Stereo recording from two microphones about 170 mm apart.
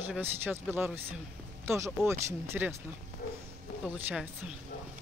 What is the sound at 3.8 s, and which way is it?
Speech, 5° right (ahead or behind).